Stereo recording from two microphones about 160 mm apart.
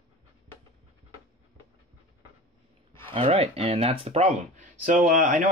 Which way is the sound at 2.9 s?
35° right (ahead or behind).